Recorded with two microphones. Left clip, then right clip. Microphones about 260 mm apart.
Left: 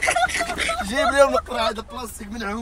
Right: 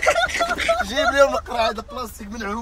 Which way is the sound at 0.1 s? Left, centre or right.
Centre.